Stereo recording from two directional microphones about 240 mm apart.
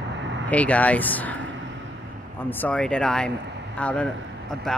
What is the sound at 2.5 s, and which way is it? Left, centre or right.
Speech, centre.